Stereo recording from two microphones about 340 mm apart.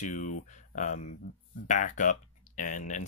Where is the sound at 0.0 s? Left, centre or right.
Left.